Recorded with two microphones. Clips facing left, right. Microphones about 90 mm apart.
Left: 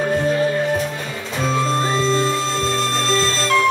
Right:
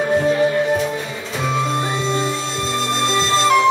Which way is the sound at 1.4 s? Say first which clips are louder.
Left 1 dB; 15° right (ahead or behind).